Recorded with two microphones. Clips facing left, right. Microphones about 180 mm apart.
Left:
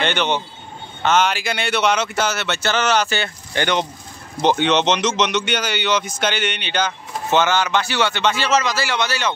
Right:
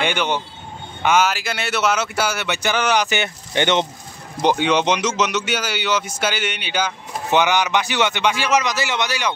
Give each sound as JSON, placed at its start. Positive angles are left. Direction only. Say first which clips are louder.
{"t": 0.0, "sound": "a man's voice", "louder": "left 1 dB", "side_deg": -10}
{"t": 4.4, "sound": "a man's voice", "louder": "left 1 dB", "side_deg": -10}